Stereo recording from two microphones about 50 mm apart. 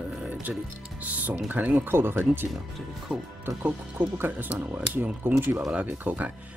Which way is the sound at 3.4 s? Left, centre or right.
Right.